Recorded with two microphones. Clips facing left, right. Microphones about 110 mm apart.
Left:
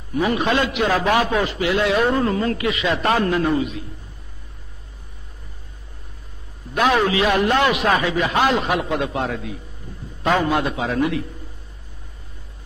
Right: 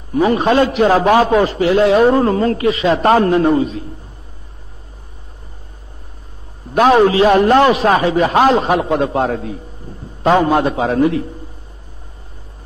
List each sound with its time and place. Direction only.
0.1 s a man's voice: 35° right (ahead or behind)
6.7 s a man's voice: 35° right (ahead or behind)